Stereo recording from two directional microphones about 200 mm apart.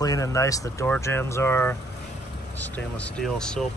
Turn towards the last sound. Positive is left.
turn(degrees=5)  # may be behind; listen again after turning